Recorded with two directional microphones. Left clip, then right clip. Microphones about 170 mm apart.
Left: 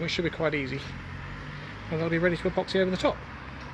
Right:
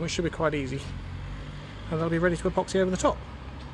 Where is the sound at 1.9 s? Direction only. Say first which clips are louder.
Even; 5° right (ahead or behind).